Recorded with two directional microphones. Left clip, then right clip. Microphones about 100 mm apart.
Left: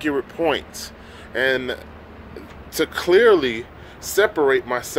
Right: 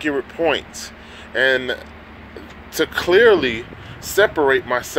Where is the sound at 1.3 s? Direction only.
15° left (ahead or behind).